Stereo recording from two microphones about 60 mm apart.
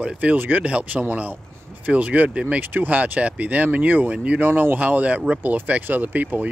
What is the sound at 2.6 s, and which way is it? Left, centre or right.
Speech, right.